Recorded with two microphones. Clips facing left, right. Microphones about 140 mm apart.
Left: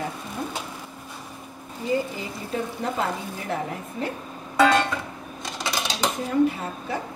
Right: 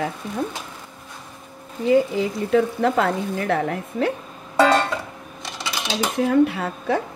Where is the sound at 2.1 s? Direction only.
75° right (ahead or behind).